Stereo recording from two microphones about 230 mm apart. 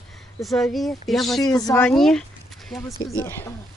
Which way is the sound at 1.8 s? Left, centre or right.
Centre.